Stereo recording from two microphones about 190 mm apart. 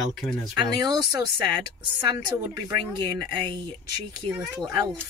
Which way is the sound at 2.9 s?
25° right (ahead or behind).